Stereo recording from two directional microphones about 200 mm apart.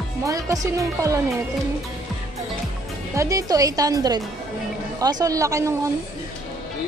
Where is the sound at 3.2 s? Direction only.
15° right (ahead or behind).